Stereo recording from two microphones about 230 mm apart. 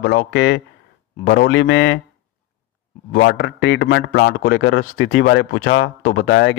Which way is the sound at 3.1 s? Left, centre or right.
Left.